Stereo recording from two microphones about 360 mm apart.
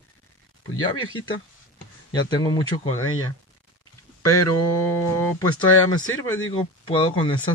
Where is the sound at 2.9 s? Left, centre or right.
Left.